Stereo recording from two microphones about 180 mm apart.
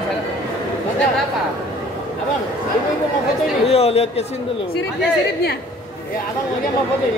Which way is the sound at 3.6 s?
35° left (ahead or behind).